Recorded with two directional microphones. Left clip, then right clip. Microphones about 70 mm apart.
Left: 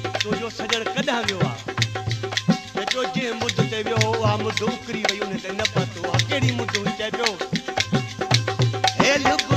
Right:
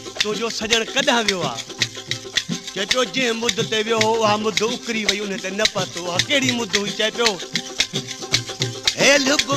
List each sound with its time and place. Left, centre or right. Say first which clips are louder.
0.2 s speech: right 3 dB; right
2.3 s music: even; right